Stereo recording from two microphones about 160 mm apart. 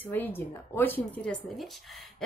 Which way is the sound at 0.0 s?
15° left (ahead or behind).